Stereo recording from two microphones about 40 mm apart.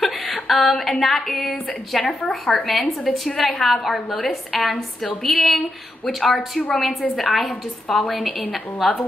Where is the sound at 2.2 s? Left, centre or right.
Left.